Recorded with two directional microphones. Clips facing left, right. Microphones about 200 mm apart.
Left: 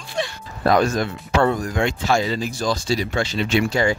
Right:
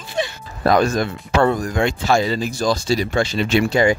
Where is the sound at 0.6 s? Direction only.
50° right (ahead or behind).